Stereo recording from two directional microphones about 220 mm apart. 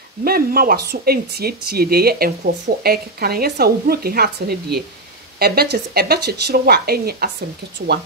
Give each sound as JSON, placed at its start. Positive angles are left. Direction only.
{"t": 0.2, "sound": "speech", "side_deg": -40}